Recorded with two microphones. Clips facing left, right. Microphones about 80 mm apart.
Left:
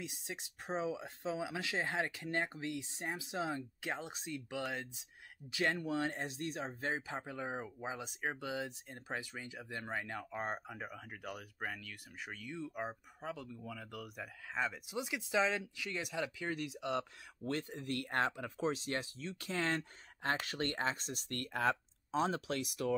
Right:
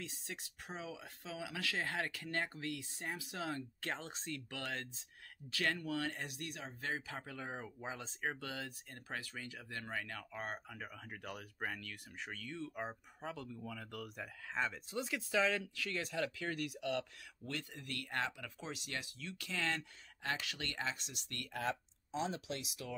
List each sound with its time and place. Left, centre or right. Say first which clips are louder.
0.0 s speech: left 2 dB; centre
11.0 s speech: left 1 dB; centre; by 22.9 s left